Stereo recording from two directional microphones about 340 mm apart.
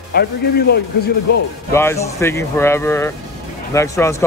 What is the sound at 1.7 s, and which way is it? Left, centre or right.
Speech, centre.